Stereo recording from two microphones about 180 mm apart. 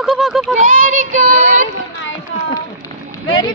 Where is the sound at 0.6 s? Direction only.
45° right (ahead or behind).